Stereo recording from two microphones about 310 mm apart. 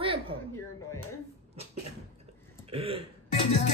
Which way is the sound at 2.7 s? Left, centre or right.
Centre.